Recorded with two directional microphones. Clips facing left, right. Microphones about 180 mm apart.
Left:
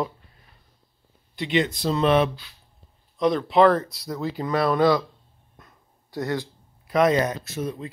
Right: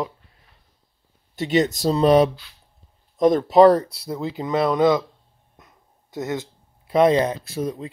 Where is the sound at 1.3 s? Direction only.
45° right (ahead or behind); by 5.0 s 20° right (ahead or behind).